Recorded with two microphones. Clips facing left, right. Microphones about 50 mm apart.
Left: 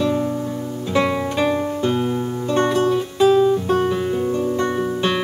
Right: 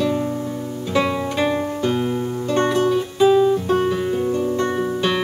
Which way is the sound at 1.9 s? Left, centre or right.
Centre.